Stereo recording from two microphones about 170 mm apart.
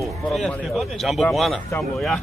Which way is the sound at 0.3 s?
Centre (ahead or behind).